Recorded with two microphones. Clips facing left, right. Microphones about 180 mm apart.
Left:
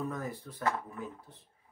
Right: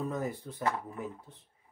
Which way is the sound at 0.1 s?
20° right (ahead or behind).